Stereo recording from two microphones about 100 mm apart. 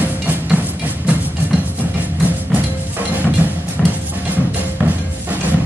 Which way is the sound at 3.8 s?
5° left (ahead or behind).